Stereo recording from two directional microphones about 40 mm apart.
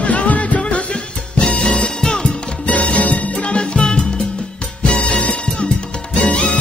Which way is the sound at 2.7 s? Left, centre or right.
Left.